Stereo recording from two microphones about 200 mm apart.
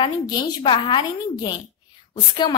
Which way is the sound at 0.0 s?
20° left (ahead or behind).